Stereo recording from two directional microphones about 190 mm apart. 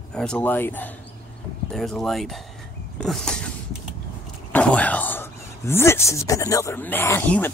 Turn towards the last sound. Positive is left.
turn(degrees=10)  # may be behind; listen again after turning